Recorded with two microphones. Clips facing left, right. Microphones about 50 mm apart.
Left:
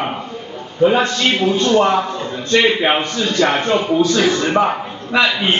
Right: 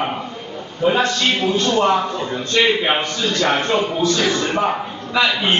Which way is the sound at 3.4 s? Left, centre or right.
Left.